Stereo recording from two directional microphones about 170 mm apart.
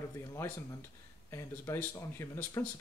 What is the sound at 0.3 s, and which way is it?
Speech, 20° left (ahead or behind).